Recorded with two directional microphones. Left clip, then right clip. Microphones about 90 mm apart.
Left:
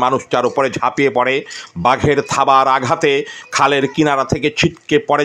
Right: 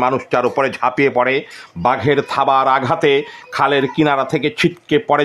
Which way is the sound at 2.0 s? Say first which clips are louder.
Left 1 dB; 15° left (ahead or behind).